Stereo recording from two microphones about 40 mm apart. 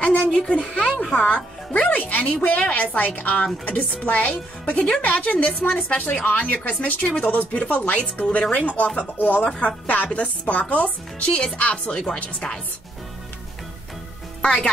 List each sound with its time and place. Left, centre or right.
0.3 s speech: centre
0.6 s a woman's voice: left
3.6 s speech: left
14.4 s speech: left